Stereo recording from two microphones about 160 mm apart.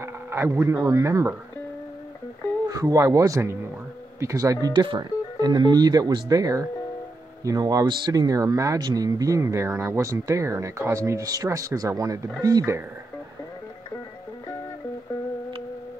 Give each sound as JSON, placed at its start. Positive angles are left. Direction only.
{"t": 0.0, "sound": "speech", "side_deg": -15}
{"t": 2.7, "sound": "speech", "side_deg": -20}